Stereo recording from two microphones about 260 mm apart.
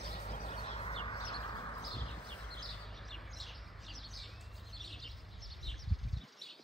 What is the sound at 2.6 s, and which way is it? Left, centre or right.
Bird, centre.